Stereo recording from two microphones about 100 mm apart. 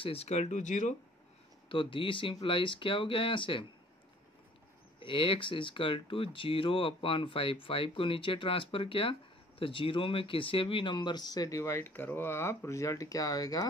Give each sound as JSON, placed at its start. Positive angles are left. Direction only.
{"t": 0.0, "sound": "speech", "side_deg": 80}
{"t": 1.7, "sound": "speech", "side_deg": 60}
{"t": 5.0, "sound": "speech", "side_deg": 60}